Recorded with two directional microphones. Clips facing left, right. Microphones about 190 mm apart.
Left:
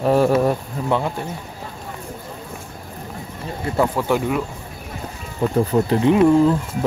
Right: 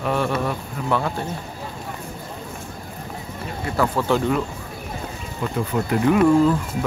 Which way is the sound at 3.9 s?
10° left (ahead or behind).